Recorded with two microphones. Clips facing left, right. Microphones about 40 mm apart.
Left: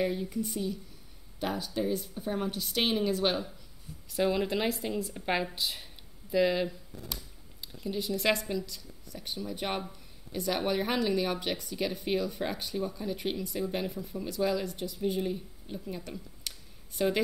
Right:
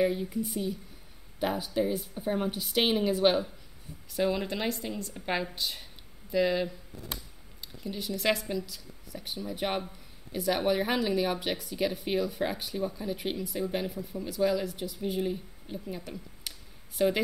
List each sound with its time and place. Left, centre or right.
0.0 s a woman's voice: centre
4.1 s speech: centre
7.1 s a sound: right
7.6 s speech: centre